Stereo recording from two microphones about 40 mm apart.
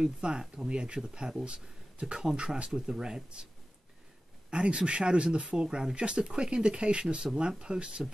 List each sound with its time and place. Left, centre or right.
0.0 s speech: right
4.5 s speech: right